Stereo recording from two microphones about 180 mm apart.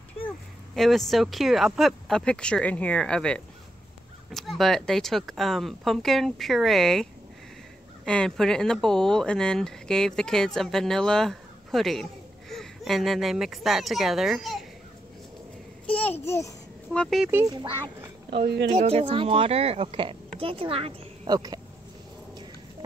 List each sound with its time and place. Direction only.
0.7 s speech: centre (ahead or behind)
15.9 s a child's voice: 10° left (ahead or behind)
17.3 s a child's voice: 15° right (ahead or behind)
18.3 s speech: 65° right (ahead or behind)
18.7 s a woman's voice: 35° right (ahead or behind)